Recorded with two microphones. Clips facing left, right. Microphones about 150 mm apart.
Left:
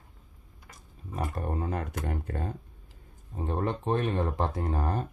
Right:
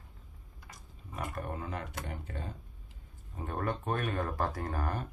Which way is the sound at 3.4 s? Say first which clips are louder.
Left 4 dB; 25° left (ahead or behind).